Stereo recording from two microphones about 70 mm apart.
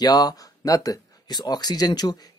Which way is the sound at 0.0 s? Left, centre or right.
Left.